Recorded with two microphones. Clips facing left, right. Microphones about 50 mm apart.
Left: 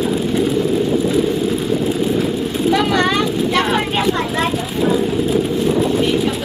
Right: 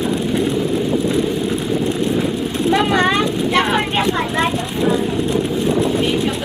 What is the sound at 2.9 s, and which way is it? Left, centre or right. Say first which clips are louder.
Vehicle: even; centre.